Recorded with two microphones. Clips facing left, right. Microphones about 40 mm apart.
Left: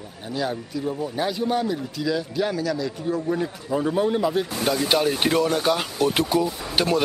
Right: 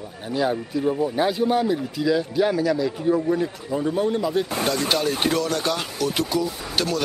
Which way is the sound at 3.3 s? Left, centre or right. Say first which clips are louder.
Right 1 dB; centre.